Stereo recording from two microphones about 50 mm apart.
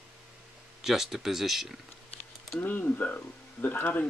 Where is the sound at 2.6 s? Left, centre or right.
Left.